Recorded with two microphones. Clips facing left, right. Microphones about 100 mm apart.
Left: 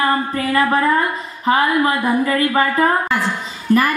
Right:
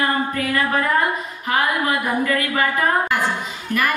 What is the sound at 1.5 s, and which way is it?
A woman's voice, 30° left (ahead or behind).